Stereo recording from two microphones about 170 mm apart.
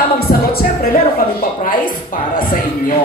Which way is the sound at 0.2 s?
65° left (ahead or behind).